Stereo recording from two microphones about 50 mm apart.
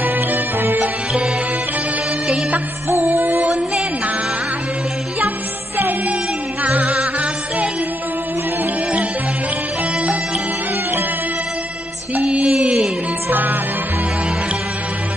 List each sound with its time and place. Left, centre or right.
0.0 s music: right
3.1 s music: right
3.4 s music: centre
6.6 s music: right
12.4 s music: centre
13.3 s music: right